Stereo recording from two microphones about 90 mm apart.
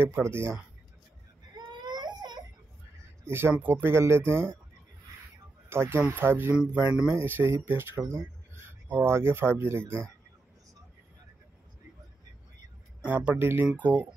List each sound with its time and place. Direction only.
0.0 s speech: 25° right (ahead or behind)
1.9 s baby cry: 50° right (ahead or behind)
3.3 s speech: 30° right (ahead or behind)
5.7 s speech: 25° right (ahead or behind)
6.5 s speech: 10° right (ahead or behind)
7.2 s speech: 25° right (ahead or behind)
13.0 s speech: 20° right (ahead or behind)